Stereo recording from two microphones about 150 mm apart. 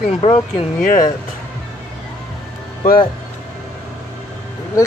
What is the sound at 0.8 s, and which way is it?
Speech, 65° left (ahead or behind).